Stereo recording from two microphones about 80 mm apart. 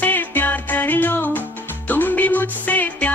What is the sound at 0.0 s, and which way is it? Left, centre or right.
Music, left.